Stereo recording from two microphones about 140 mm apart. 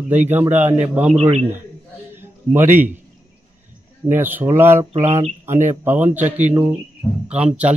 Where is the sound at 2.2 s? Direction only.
15° right (ahead or behind).